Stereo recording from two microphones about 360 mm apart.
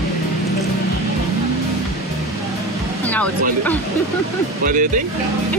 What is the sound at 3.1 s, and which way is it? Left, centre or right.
Speech, centre.